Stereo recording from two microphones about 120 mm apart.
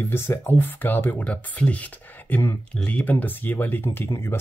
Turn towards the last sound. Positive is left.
turn(degrees=20)  # may be behind; listen again after turning